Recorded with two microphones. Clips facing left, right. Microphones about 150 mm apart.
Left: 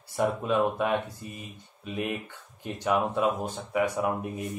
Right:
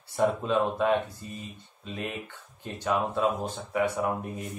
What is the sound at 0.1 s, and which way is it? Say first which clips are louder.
Speech: right 1 dB; 15° left (ahead or behind).